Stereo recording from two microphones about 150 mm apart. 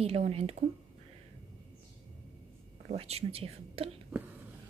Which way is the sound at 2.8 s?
45° right (ahead or behind).